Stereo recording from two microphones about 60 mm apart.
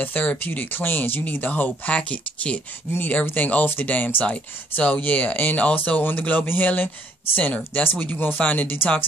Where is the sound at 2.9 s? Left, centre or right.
Left.